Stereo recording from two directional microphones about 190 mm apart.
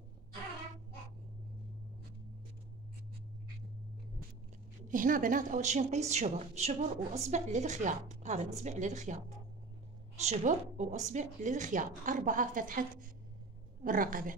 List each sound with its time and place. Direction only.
4.8 s a woman's voice: 45° right (ahead or behind)